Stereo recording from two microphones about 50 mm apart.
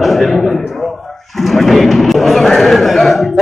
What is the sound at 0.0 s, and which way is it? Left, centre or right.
A man's voice, centre.